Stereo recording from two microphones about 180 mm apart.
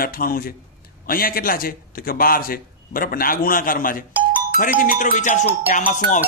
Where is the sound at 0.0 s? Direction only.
55° left (ahead or behind).